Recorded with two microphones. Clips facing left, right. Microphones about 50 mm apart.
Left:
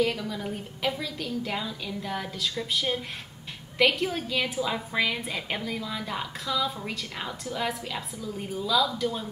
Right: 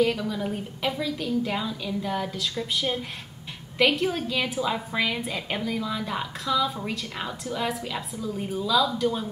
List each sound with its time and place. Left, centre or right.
0.0 s a woman's voice: centre